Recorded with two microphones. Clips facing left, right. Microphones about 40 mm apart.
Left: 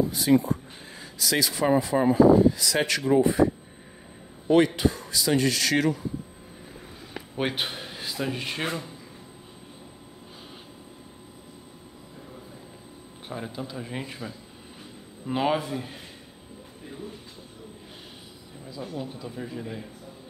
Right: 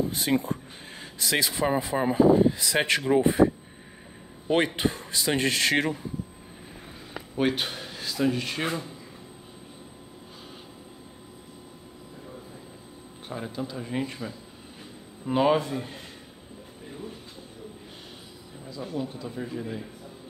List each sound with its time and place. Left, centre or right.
0.0 s a sound: right
1.2 s a man's voice: right
4.5 s a man's voice: right
7.3 s a man's voice: centre
13.3 s speech: centre
18.8 s speech: centre